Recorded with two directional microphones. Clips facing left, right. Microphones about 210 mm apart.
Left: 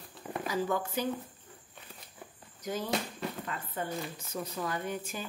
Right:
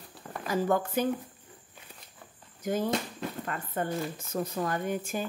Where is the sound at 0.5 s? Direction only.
50° right (ahead or behind).